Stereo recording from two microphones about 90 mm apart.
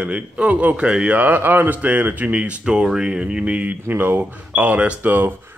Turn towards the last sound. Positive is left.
turn(degrees=-20)  # may be behind; listen again after turning